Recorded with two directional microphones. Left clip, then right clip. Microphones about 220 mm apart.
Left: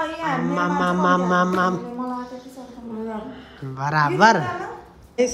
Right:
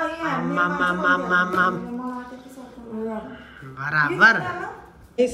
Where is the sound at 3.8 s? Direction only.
25° left (ahead or behind).